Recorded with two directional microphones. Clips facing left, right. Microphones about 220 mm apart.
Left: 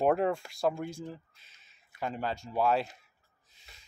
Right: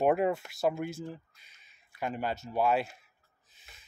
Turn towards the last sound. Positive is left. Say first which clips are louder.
# even
turn(degrees=-5)  # may be behind; listen again after turning